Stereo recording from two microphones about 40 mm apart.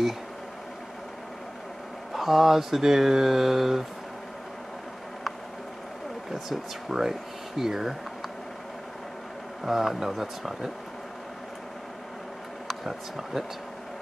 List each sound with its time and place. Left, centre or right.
2.1 s mantra: centre
6.3 s mantra: centre
9.7 s mantra: centre
12.8 s speech: centre